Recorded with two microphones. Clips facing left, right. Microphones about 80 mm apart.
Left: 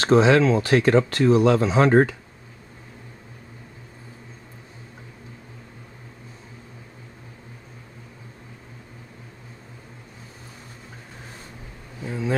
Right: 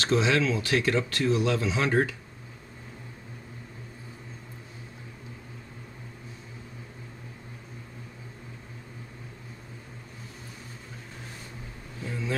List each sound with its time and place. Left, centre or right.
0.0 s speech: left
12.0 s vehicle: left